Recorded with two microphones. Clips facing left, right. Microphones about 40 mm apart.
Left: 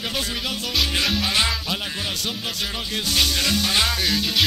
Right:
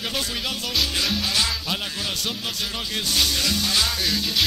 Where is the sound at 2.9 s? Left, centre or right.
Centre.